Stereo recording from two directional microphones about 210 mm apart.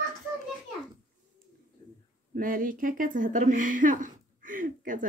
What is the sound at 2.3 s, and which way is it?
Speech, 40° right (ahead or behind).